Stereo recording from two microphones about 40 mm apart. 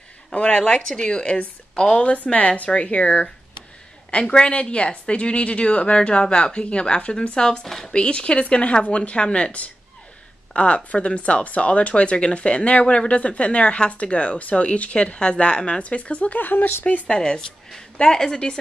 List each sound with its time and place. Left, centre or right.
0.3 s speech: left
4.1 s speech: left
7.6 s speech: centre
7.9 s speech: left
16.3 s speech: left
17.1 s a woman's voice: centre